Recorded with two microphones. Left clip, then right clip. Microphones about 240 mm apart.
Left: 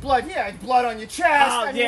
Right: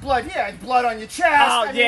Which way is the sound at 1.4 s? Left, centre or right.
Centre.